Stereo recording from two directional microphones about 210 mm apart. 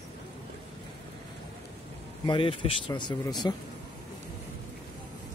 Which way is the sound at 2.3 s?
25° left (ahead or behind).